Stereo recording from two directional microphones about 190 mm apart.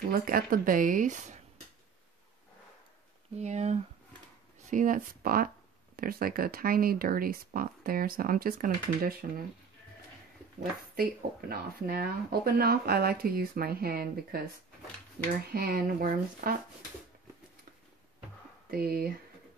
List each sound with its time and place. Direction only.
0.2 s speech: 50° right (ahead or behind)
3.3 s speech: 35° right (ahead or behind)
11.0 s speech: 50° right (ahead or behind)
18.7 s speech: 55° right (ahead or behind)